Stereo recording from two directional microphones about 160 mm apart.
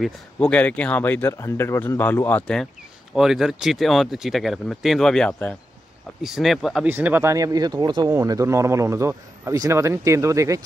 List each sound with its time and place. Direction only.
0.0 s speech: 5° left (ahead or behind); by 10.6 s 20° right (ahead or behind)